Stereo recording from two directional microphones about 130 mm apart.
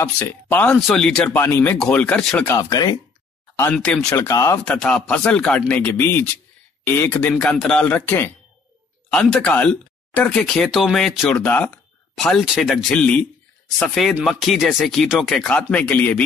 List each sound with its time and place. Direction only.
0.2 s speech: 10° left (ahead or behind)
1.4 s speech: 20° left (ahead or behind)
1.8 s speech: 10° left (ahead or behind)
2.5 s speech: 25° left (ahead or behind)
3.7 s speech: 5° left (ahead or behind)
4.2 s speech: 25° left (ahead or behind)
4.6 s speech: 5° left (ahead or behind)
13.7 s speech: centre (ahead or behind)